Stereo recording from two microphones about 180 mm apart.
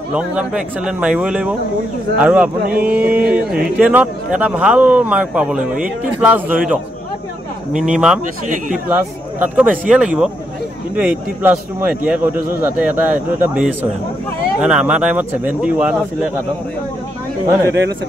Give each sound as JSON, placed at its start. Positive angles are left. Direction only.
{"t": 0.1, "sound": "speech", "side_deg": -5}
{"t": 7.7, "sound": "speech", "side_deg": -5}